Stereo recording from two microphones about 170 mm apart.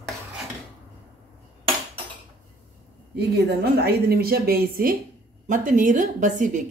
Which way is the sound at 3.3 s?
70° right (ahead or behind).